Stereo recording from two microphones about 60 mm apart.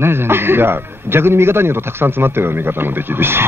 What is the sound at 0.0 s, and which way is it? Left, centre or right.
A man's voice, right.